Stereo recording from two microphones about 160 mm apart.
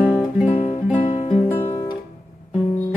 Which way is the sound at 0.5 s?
45° left (ahead or behind).